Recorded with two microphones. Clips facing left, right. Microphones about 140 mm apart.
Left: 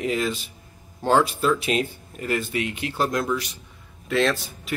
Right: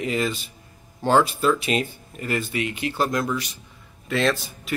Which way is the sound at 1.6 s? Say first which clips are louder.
Even; centre (ahead or behind).